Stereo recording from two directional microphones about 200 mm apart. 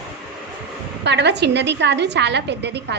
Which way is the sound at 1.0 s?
60° right (ahead or behind).